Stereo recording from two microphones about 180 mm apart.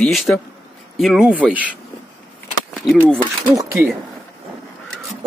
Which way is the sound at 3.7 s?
5° right (ahead or behind).